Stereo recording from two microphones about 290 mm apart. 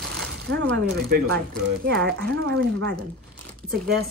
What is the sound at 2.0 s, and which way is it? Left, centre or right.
Speech, right.